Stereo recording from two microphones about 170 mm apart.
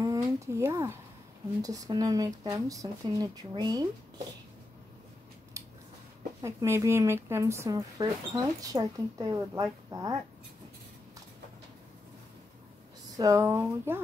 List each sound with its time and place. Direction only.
0.0 s speech: 20° right (ahead or behind)
6.4 s speech: 15° right (ahead or behind)
13.2 s speech: 20° right (ahead or behind)